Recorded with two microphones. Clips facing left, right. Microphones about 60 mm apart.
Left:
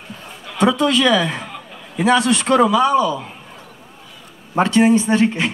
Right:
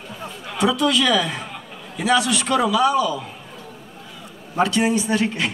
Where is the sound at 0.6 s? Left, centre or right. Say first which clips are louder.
Left 3 dB; left.